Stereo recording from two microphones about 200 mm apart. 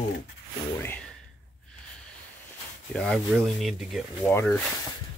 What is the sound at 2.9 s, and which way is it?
Speech, 5° left (ahead or behind).